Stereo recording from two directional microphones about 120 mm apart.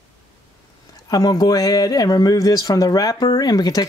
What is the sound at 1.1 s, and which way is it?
Speech, 30° left (ahead or behind).